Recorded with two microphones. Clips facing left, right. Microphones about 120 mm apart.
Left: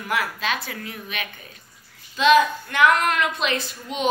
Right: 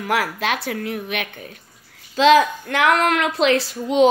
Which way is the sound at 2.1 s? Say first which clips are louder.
Right 3 dB; 90° right.